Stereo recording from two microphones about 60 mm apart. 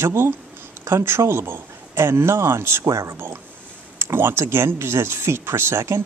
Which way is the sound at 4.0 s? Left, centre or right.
Right.